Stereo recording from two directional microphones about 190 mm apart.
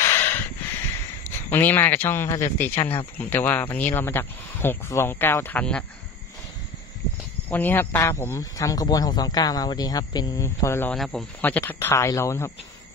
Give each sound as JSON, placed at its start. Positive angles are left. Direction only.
{"t": 0.0, "sound": "a sound", "side_deg": 10}
{"t": 1.5, "sound": "speech", "side_deg": 10}
{"t": 7.4, "sound": "speech", "side_deg": 10}